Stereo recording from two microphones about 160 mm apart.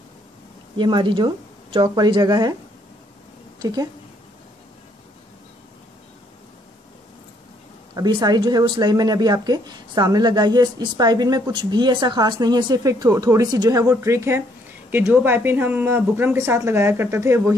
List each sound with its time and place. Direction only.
0.7 s speech: 30° right (ahead or behind)
3.5 s a woman's voice: 25° right (ahead or behind)
7.9 s speech: 25° right (ahead or behind)